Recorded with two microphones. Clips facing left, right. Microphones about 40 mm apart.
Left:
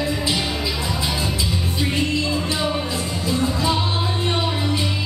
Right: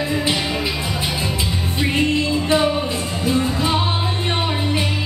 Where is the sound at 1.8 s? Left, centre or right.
Right.